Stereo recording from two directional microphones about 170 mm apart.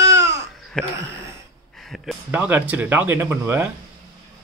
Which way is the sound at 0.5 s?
5° left (ahead or behind).